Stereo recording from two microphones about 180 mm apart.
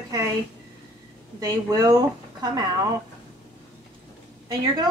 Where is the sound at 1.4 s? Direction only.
20° right (ahead or behind).